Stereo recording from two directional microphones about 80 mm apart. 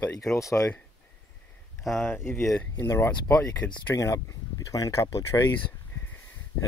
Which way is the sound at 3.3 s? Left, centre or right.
Centre.